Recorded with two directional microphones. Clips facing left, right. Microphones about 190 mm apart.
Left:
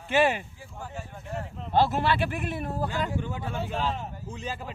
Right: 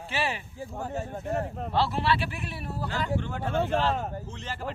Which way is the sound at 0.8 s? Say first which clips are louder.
Right 6 dB; 40° right (ahead or behind).